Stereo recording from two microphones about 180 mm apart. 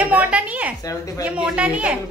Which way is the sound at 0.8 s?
20° left (ahead or behind).